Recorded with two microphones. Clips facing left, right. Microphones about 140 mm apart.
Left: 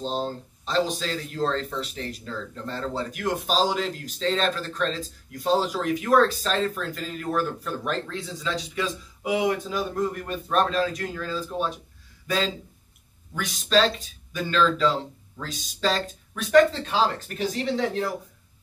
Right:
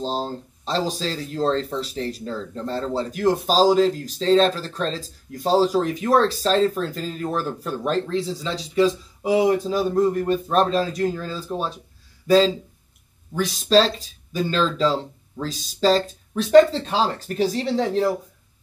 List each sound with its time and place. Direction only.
0.0 s speech: 35° right (ahead or behind)
13.3 s speech: 30° right (ahead or behind)